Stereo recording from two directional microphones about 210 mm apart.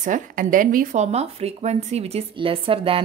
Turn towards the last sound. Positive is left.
turn(degrees=-25)  # may be behind; listen again after turning